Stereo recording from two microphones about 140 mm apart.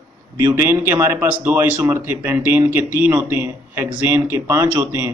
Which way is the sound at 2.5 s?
15° right (ahead or behind).